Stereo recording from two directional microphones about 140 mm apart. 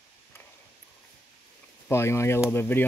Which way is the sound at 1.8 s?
20° left (ahead or behind).